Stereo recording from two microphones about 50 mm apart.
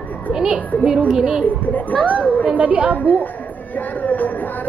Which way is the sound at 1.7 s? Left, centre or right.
Left.